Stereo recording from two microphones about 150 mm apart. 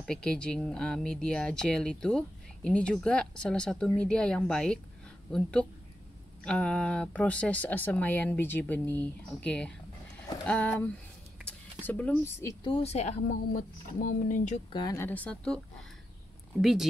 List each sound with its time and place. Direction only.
0.0 s speech: 5° left (ahead or behind)
12.6 s speech: 40° left (ahead or behind)
13.6 s speech: 65° left (ahead or behind)
14.7 s speech: 30° left (ahead or behind)
15.0 s speech: 10° left (ahead or behind)